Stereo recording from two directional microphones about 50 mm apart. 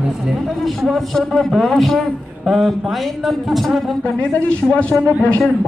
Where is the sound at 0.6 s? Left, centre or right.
Centre.